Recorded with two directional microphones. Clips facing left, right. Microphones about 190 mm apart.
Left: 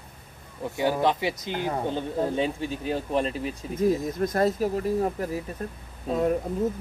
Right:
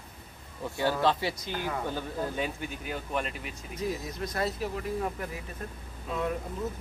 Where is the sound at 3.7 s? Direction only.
50° left (ahead or behind).